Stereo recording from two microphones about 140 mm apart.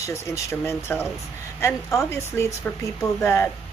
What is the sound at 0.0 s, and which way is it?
Speech, 20° left (ahead or behind).